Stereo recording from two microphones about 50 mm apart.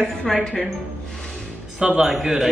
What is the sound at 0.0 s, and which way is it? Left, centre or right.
Speech, centre.